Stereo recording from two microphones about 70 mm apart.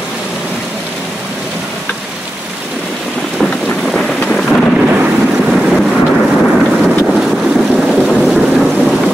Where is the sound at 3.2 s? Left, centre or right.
Centre.